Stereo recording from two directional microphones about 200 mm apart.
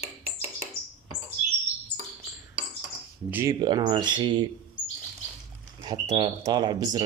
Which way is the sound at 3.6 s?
20° right (ahead or behind).